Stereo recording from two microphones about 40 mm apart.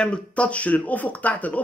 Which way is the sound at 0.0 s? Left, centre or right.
Left.